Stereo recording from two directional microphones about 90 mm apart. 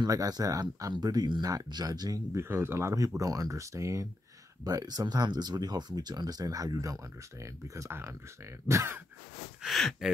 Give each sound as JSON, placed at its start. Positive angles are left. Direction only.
{"t": 0.0, "sound": "speech", "side_deg": -45}
{"t": 2.3, "sound": "speech", "side_deg": -30}
{"t": 9.6, "sound": "speech", "side_deg": 0}